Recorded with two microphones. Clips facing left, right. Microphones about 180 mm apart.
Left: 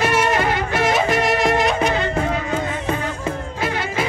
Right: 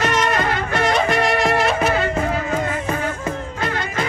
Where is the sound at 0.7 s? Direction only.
5° left (ahead or behind).